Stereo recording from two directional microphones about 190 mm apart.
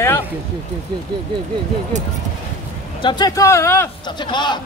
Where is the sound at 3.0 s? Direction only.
20° left (ahead or behind).